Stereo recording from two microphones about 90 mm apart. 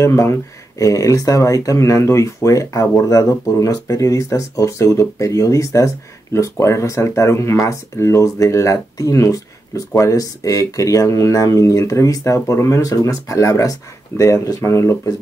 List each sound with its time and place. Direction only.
0.0 s speech: 35° left (ahead or behind)